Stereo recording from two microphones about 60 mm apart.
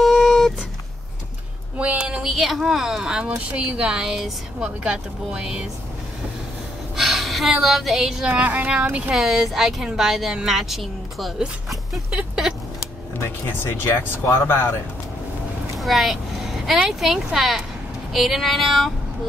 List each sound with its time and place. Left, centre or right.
0.0 s a sound: centre
1.8 s a sound: centre
2.2 s speech: centre
3.3 s speech: right
7.0 s a sound: centre
7.5 s speech: centre
8.3 s speech: right
9.1 s speech: centre
13.7 s speech: left
15.8 s speech: centre